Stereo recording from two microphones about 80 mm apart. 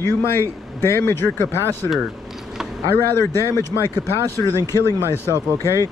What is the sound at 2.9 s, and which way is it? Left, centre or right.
A man's voice, left.